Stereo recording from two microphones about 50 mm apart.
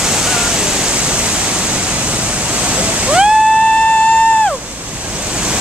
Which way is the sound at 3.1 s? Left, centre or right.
Centre.